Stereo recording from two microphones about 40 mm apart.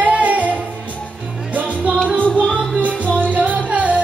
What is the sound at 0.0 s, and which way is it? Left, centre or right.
Music, right.